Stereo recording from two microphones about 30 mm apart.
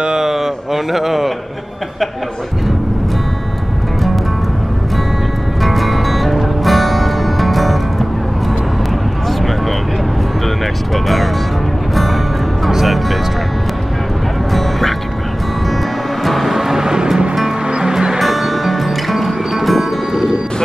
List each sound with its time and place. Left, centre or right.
0.0 s a sound: right
0.9 s a man's voice: centre
5.6 s music: centre
10.9 s speech: centre
11.9 s music: centre
14.5 s music: centre
16.3 s music: centre
16.5 s vehicle: centre
17.6 s music: right
18.2 s music: centre